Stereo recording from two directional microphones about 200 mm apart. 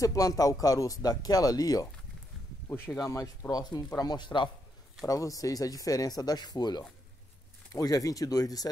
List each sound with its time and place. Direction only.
0.0 s speech: 15° left (ahead or behind)